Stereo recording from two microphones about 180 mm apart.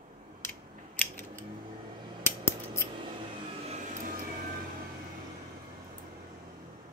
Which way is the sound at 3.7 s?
45° right (ahead or behind).